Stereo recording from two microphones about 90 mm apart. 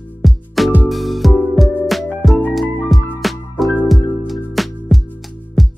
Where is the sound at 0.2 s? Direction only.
Centre (ahead or behind).